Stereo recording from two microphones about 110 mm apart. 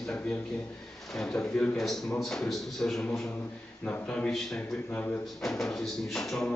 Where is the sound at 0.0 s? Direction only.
10° left (ahead or behind).